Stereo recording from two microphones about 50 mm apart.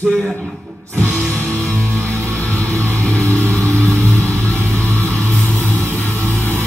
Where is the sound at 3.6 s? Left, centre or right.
Left.